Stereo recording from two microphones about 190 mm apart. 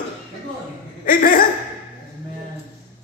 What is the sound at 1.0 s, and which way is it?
Speech, 45° left (ahead or behind).